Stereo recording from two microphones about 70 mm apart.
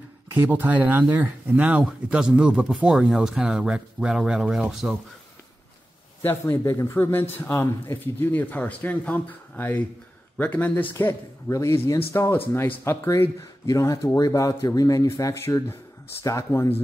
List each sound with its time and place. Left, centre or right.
0.5 s speech: right; by 4.9 s centre
6.2 s speech: left
6.6 s speech: left
11.5 s speech: left
12.3 s speech: left
13.7 s speech: left
14.8 s speech: left